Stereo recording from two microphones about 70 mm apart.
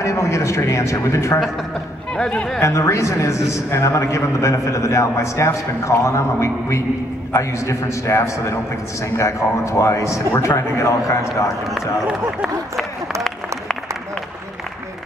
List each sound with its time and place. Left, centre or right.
0.0 s a man's voice: left
2.1 s speech: centre
2.6 s a man's voice: left